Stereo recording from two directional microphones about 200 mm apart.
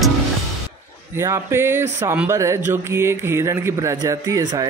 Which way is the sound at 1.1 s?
15° right (ahead or behind).